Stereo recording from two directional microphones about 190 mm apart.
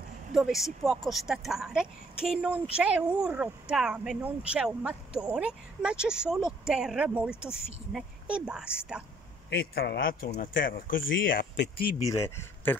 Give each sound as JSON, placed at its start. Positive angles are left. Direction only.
{"t": 0.3, "sound": "speech", "side_deg": -5}
{"t": 9.5, "sound": "speech", "side_deg": 55}
{"t": 12.0, "sound": "speech", "side_deg": 15}